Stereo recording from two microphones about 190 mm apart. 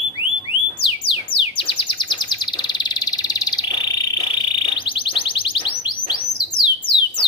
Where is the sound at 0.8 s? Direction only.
25° left (ahead or behind).